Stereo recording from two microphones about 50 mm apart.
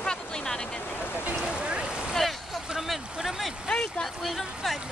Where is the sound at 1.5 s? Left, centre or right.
Right.